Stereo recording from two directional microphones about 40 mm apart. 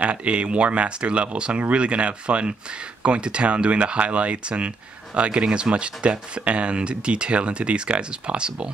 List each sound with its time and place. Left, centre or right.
0.0 s speech: right